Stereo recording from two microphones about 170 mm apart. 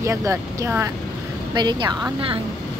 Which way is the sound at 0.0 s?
15° right (ahead or behind).